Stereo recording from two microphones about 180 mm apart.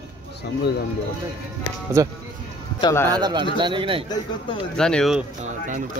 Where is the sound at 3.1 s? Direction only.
25° right (ahead or behind).